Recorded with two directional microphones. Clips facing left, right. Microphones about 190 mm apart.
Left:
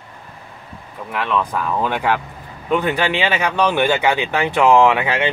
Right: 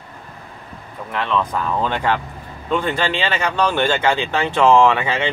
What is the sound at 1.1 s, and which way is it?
Speech, 5° left (ahead or behind).